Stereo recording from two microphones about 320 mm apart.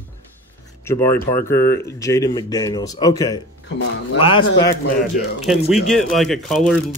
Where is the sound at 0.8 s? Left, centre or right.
Centre.